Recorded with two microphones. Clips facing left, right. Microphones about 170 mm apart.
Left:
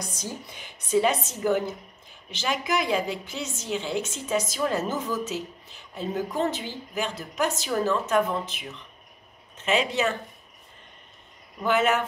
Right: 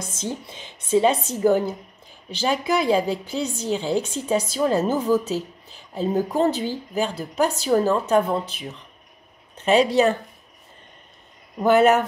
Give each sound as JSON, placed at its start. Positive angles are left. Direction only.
{"t": 0.0, "sound": "a woman's voice", "side_deg": -25}
{"t": 11.6, "sound": "a woman's voice", "side_deg": -40}